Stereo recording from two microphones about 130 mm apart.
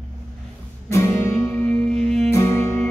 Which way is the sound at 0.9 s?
20° left (ahead or behind).